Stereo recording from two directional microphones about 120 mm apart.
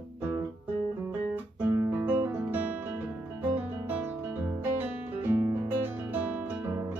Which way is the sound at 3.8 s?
15° right (ahead or behind).